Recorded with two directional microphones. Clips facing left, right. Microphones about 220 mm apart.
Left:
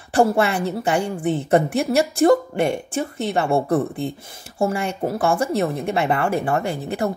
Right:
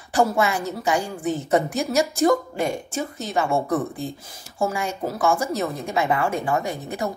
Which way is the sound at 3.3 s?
30° left (ahead or behind).